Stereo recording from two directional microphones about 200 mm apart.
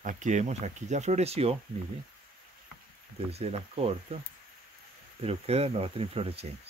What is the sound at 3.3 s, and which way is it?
Speech, 30° right (ahead or behind).